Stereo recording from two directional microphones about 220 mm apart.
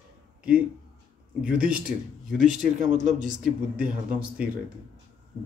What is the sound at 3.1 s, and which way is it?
Speech, 35° right (ahead or behind).